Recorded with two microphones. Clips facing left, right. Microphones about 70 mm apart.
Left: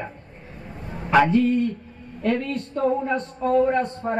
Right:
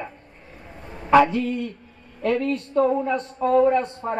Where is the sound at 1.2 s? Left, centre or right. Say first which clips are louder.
Left 5 dB; left.